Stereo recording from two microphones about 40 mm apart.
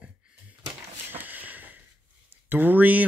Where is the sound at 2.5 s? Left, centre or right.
Right.